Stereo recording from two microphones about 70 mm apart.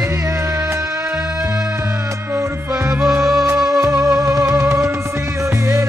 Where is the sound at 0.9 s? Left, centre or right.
Centre.